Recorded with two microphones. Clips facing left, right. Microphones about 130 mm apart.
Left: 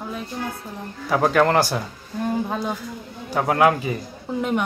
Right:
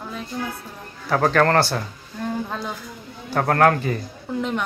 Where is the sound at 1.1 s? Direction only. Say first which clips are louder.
Even; 10° left (ahead or behind).